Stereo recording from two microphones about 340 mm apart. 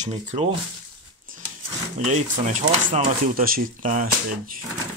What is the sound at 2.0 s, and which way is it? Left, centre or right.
Speech, right.